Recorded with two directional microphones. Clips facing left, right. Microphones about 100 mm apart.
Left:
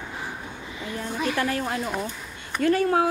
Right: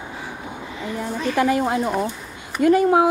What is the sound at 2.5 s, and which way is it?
Speech, 15° right (ahead or behind).